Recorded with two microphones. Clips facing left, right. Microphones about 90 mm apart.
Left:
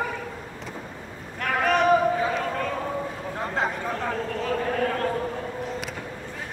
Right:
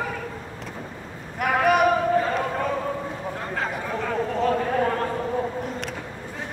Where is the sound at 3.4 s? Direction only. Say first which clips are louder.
Left 4 dB; 20° left (ahead or behind).